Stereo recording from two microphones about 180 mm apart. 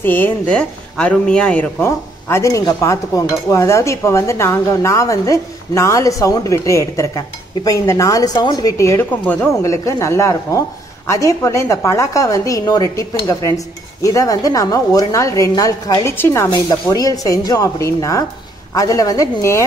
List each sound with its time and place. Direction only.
0.0 s a woman's voice: 10° left (ahead or behind)